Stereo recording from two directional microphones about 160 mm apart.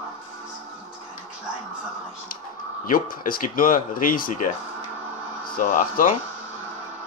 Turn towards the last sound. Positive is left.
turn(degrees=55)  # may be behind; listen again after turning